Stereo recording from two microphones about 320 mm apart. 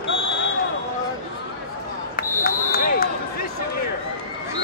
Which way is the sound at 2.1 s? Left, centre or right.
Left.